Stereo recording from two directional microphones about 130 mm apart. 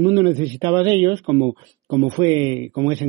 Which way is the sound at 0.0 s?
35° right (ahead or behind).